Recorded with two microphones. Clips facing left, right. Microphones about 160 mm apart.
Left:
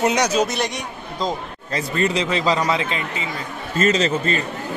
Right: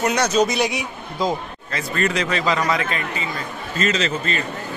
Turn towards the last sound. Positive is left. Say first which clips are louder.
# left 3 dB
turn(degrees=40)  # may be behind; listen again after turning